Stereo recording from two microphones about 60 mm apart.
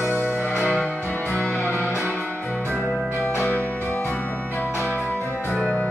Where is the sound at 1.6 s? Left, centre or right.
Left.